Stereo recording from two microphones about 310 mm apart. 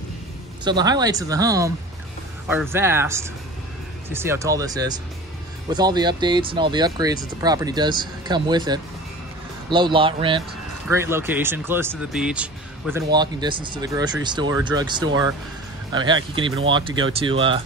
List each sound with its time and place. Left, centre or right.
0.7 s speech: centre